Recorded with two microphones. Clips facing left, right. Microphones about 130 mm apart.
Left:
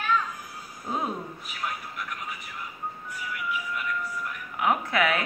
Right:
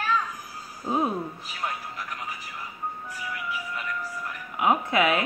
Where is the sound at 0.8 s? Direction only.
20° right (ahead or behind).